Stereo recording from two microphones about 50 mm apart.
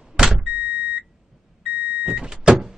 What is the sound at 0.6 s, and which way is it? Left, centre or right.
Power windows, right.